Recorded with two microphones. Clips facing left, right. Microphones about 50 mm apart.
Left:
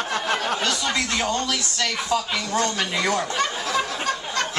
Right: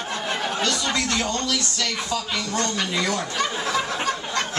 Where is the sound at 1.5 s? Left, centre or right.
Left.